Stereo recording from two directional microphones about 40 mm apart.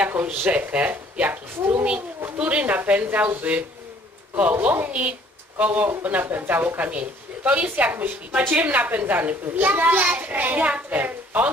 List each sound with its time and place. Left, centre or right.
0.2 s a child's voice: right
2.3 s speech: right
4.4 s speech: right
6.0 s a child's voice: right
6.8 s a child's voice: right